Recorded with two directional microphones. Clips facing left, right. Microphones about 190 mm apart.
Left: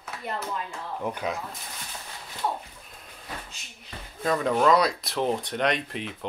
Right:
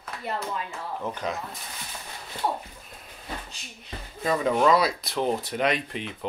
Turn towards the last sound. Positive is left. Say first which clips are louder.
# right 1 dB
turn(degrees=0)  # may be behind; listen again after turning